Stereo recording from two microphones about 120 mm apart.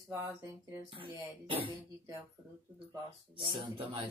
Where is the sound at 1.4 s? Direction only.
45° right (ahead or behind).